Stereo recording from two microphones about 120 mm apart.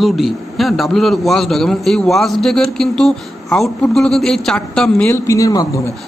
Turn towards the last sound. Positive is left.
turn(degrees=30)  # may be behind; listen again after turning